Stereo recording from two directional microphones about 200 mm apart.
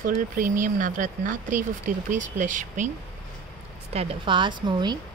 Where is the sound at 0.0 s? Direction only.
40° right (ahead or behind).